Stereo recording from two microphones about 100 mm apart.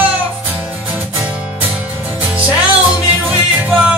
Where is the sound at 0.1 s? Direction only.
15° right (ahead or behind).